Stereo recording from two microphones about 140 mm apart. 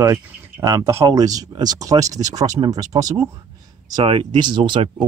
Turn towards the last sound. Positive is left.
turn(degrees=-35)  # may be behind; listen again after turning